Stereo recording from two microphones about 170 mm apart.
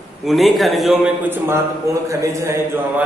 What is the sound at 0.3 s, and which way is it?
Speech, centre (ahead or behind).